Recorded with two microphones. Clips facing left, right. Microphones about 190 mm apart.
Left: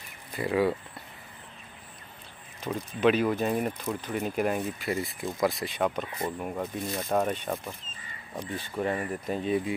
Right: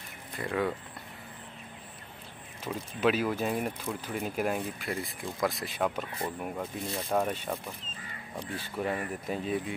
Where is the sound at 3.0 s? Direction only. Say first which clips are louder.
Left 4 dB; 5° right (ahead or behind).